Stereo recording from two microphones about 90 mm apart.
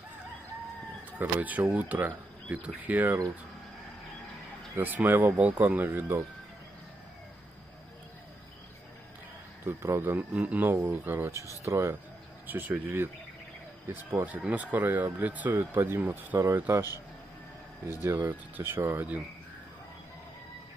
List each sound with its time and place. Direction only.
1.1 s speech: 20° right (ahead or behind)
4.7 s speech: 25° right (ahead or behind)
9.7 s speech: 30° right (ahead or behind)
12.4 s speech: 20° right (ahead or behind)
14.1 s speech: 20° right (ahead or behind)
17.8 s speech: 30° right (ahead or behind)